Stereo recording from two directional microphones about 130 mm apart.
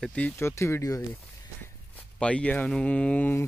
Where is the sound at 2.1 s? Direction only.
10° left (ahead or behind).